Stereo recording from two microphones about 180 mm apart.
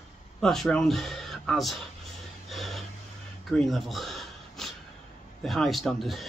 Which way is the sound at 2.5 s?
Centre (ahead or behind).